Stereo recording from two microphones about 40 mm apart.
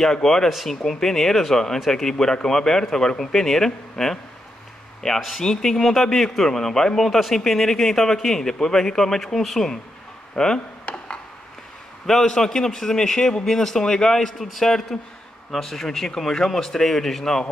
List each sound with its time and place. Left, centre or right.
0.0 s speech: centre
10.3 s speech: centre
10.9 s a sound: left
12.1 s speech: centre